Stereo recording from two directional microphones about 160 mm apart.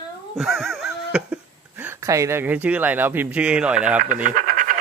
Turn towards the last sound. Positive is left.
turn(degrees=-55)  # may be behind; listen again after turning